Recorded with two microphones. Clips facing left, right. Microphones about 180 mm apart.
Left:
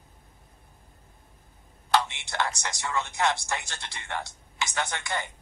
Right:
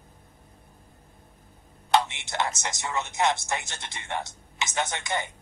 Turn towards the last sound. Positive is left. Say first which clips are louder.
# right 2 dB
turn(degrees=-20)  # may be behind; listen again after turning